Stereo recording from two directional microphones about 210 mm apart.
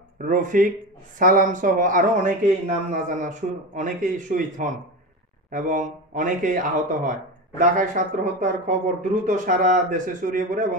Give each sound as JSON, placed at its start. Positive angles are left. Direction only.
{"t": 0.2, "sound": "speech", "side_deg": -40}